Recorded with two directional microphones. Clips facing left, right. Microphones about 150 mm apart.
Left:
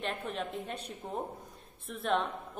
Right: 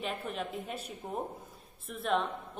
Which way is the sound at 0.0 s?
Centre (ahead or behind).